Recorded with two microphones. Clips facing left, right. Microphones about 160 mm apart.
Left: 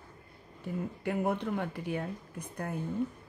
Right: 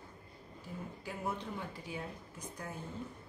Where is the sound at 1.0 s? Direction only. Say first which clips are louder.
Left 9 dB; 60° left (ahead or behind).